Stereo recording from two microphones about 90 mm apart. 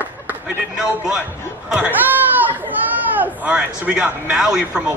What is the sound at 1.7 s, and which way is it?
Laughter, 20° right (ahead or behind).